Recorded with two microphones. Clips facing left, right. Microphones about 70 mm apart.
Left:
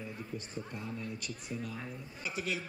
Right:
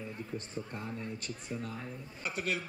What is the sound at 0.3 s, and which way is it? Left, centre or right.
Speech, right.